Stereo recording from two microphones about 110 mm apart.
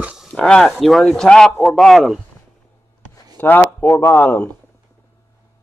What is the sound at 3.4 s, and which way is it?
Speech, 15° left (ahead or behind).